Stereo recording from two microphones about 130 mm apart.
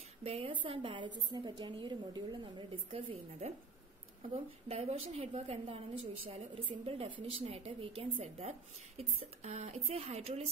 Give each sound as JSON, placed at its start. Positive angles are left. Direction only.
{"t": 0.2, "sound": "a woman's voice", "side_deg": -50}
{"t": 2.9, "sound": "speech", "side_deg": -55}
{"t": 4.6, "sound": "speech", "side_deg": -50}